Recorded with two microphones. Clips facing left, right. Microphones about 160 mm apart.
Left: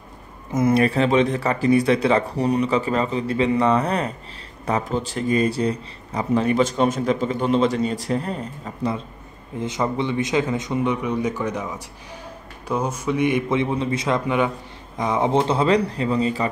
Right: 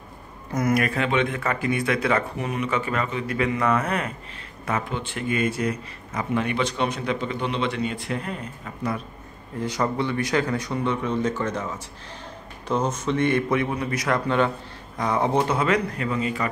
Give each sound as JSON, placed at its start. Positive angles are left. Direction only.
{"t": 0.5, "sound": "speech", "side_deg": 25}